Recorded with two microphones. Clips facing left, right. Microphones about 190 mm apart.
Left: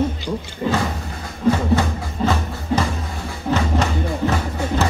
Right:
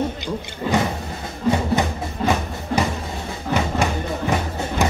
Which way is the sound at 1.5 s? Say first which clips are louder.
Left 2 dB; 15° right (ahead or behind).